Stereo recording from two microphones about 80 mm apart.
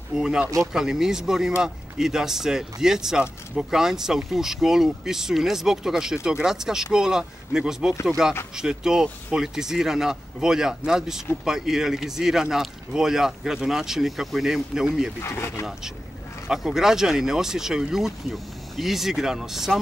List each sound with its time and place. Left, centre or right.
0.2 s speech: centre
15.2 s speech: left
16.4 s speech: centre